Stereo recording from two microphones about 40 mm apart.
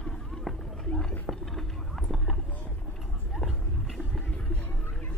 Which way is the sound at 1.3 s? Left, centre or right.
Centre.